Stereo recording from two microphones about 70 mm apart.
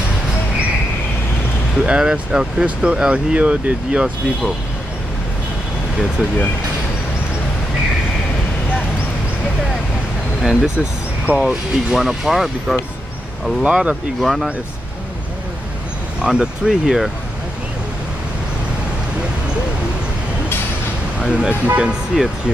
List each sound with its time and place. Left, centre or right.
1.9 s speech: centre
10.4 s speech: centre
13.6 s speech: centre
14.2 s speech: centre
16.2 s speech: centre
21.2 s speech: centre
22.1 s speech: centre